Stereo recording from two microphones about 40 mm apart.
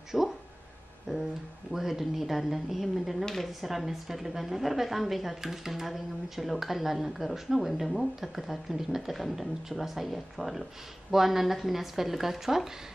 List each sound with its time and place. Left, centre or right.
0.1 s speech: centre
1.7 s speech: centre